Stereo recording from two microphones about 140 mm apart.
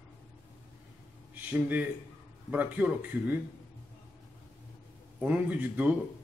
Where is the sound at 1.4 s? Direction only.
10° right (ahead or behind).